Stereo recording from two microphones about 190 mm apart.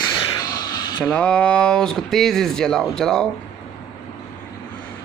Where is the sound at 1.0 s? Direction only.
5° left (ahead or behind).